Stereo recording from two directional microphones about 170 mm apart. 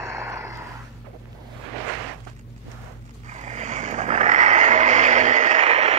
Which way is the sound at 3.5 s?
45° right (ahead or behind).